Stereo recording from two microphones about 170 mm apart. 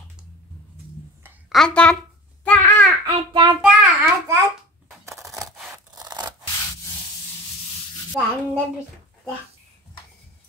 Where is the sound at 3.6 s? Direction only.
10° right (ahead or behind).